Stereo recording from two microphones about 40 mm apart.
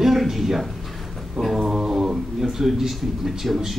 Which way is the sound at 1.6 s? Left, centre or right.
Centre.